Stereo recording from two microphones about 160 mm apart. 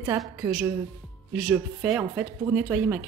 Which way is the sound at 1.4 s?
5° right (ahead or behind).